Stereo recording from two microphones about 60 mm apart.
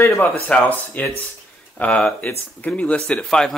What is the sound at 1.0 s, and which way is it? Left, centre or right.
Speech, left.